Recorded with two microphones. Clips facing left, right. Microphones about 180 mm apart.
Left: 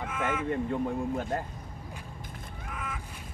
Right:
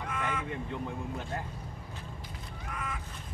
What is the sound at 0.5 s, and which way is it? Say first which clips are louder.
Speech: left 7 dB; 45° left (ahead or behind).